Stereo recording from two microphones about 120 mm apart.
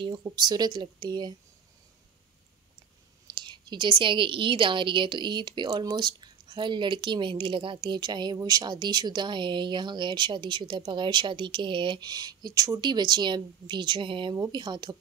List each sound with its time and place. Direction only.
0.0 s a woman's voice: 35° right (ahead or behind)
3.3 s a woman's voice: 35° right (ahead or behind)
14.3 s a woman's voice: 35° right (ahead or behind)